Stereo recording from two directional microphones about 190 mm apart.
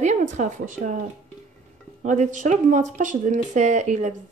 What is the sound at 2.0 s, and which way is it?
Speech, 40° right (ahead or behind).